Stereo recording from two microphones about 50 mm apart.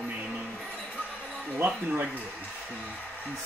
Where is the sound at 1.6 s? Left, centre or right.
Right.